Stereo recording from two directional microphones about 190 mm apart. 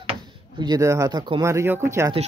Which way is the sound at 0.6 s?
20° right (ahead or behind).